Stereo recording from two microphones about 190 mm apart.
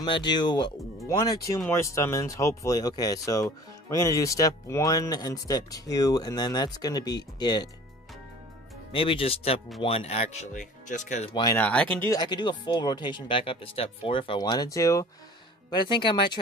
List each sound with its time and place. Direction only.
0.0 s speech: 25° left (ahead or behind)
8.9 s speech: 30° left (ahead or behind)
11.5 s speech: 5° left (ahead or behind)
12.1 s speech: 20° left (ahead or behind)